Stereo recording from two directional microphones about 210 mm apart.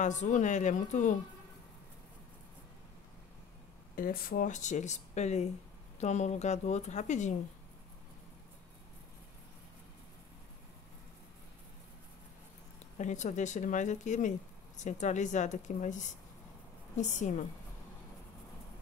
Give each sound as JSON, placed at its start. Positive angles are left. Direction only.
{"t": 0.0, "sound": "speech", "side_deg": 35}
{"t": 3.9, "sound": "speech", "side_deg": 45}
{"t": 12.9, "sound": "speech", "side_deg": 35}